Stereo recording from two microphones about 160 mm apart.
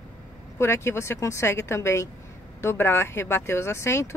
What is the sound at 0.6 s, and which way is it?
Speech, 15° left (ahead or behind).